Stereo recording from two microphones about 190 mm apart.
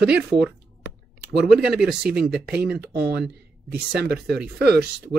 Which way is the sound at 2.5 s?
55° right (ahead or behind).